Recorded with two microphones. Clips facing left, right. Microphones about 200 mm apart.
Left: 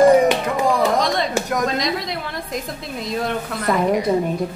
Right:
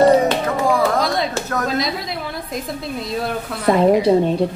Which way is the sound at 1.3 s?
15° left (ahead or behind).